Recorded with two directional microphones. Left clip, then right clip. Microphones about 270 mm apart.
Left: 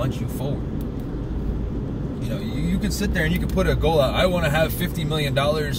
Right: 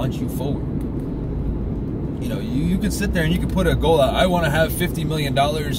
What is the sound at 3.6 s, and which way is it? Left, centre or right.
Speech, centre.